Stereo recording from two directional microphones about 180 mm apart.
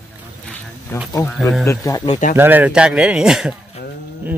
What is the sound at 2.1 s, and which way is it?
Speech, 45° left (ahead or behind).